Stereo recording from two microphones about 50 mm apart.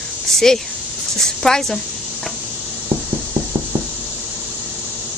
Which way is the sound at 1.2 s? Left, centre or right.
Centre.